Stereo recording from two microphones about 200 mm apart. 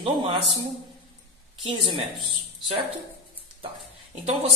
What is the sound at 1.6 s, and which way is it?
Speech, 25° right (ahead or behind).